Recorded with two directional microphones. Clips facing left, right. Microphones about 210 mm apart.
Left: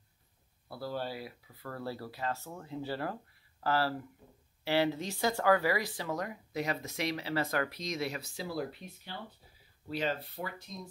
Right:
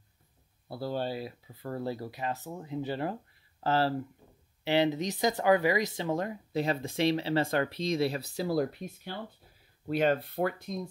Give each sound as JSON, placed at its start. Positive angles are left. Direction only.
{"t": 0.7, "sound": "speech", "side_deg": -25}
{"t": 9.8, "sound": "speech", "side_deg": -55}